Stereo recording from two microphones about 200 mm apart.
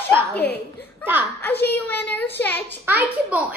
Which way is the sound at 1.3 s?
10° left (ahead or behind).